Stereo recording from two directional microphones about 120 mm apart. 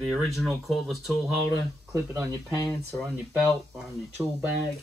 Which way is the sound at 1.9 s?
25° right (ahead or behind).